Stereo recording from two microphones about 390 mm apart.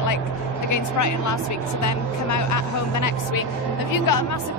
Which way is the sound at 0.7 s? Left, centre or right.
Left.